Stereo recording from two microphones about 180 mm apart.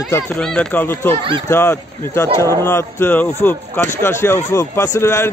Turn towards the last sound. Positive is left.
turn(degrees=15)  # may be behind; listen again after turning